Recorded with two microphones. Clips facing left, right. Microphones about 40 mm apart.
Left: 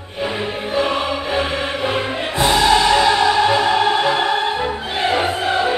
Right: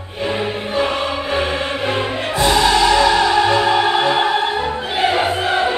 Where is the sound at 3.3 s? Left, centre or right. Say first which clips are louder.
Even; centre.